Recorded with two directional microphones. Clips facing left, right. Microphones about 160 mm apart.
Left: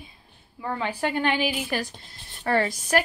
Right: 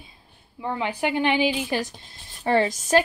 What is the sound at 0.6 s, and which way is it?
A woman's voice, 20° right (ahead or behind).